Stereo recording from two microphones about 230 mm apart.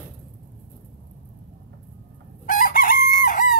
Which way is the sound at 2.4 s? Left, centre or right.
Left.